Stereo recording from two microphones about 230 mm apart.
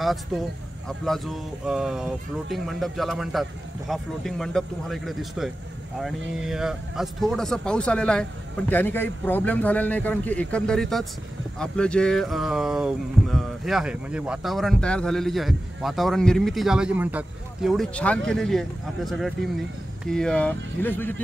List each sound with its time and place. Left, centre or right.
0.0 s speech: centre